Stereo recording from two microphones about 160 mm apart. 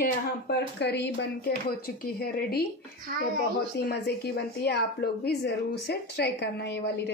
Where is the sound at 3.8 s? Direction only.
85° left.